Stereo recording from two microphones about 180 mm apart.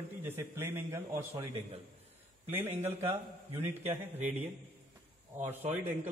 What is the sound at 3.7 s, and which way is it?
Speech, 10° right (ahead or behind).